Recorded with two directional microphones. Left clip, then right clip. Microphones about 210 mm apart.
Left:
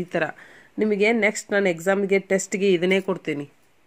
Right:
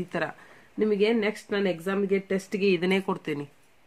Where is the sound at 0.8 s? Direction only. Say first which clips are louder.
Left 4 dB; 20° left (ahead or behind); by 3.5 s 5° left (ahead or behind).